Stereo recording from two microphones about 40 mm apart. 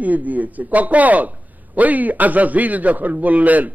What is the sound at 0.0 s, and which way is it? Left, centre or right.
A man's voice, right.